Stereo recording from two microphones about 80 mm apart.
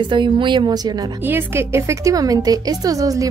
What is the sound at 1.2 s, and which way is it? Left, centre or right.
A woman's voice, right.